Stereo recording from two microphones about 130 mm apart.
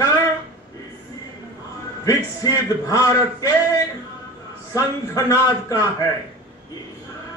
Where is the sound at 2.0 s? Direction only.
25° left (ahead or behind).